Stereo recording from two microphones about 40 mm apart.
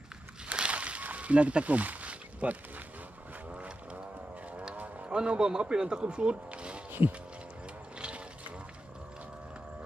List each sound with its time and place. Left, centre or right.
0.5 s a sound: right
3.5 s vehicle: right
5.1 s speech: right